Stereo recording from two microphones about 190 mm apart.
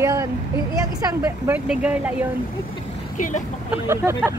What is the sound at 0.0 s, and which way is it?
Vehicle, 15° right (ahead or behind).